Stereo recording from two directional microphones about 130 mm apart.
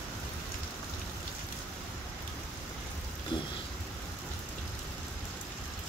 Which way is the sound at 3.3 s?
40° left (ahead or behind).